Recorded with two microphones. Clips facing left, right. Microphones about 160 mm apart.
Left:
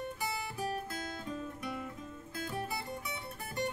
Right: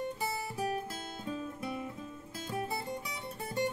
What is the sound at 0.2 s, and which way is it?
Music, 25° right (ahead or behind).